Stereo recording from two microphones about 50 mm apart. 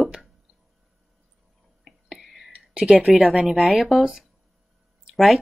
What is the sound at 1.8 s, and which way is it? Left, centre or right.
Whispering, centre.